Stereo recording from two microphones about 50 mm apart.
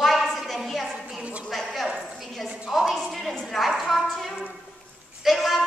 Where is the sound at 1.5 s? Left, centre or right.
Centre.